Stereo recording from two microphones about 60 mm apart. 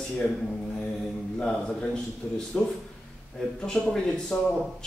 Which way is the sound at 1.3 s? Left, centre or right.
Centre.